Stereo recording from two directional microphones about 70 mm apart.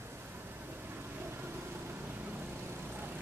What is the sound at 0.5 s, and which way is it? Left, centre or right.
Vehicle, right.